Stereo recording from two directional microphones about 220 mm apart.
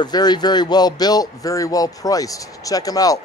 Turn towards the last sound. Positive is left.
turn(degrees=15)  # may be behind; listen again after turning